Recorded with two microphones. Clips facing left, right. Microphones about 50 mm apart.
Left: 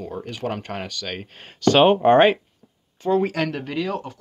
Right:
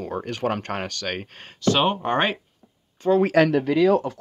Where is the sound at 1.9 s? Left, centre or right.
Left.